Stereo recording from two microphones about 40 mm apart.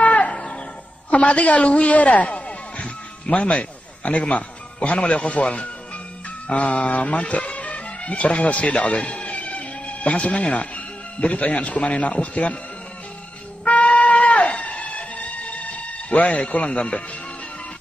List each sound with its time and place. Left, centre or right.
0.0 s music: left
1.1 s a woman's voice: left
13.7 s music: left